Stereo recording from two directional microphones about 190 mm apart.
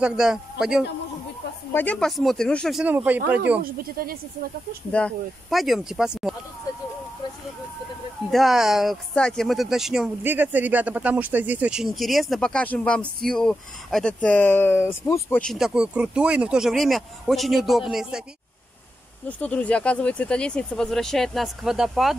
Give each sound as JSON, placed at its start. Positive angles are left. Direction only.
{"t": 0.0, "sound": "speech", "side_deg": -5}
{"t": 1.7, "sound": "speech", "side_deg": 10}
{"t": 3.6, "sound": "speech", "side_deg": -50}
{"t": 4.9, "sound": "speech", "side_deg": 5}
{"t": 8.3, "sound": "speech", "side_deg": 0}
{"t": 15.4, "sound": "speech", "side_deg": 0}
{"t": 19.2, "sound": "speech", "side_deg": 5}